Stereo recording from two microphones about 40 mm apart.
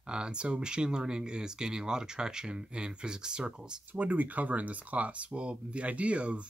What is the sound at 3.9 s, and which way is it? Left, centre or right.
Speech, right.